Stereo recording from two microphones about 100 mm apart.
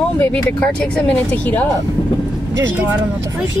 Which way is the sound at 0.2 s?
15° left (ahead or behind).